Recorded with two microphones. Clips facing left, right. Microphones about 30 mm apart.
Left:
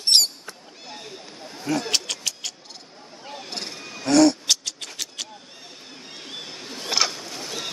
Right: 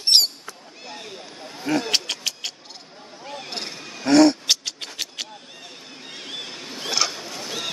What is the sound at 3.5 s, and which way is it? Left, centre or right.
Wild animals, centre.